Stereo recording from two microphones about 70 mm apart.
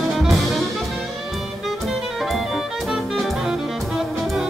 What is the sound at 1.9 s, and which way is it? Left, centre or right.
Music, centre.